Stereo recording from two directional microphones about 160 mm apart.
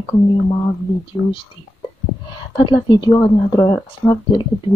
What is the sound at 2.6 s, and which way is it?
Speech, 25° left (ahead or behind).